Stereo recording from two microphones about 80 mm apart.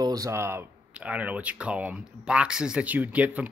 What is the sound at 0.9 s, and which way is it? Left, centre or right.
Speech, centre.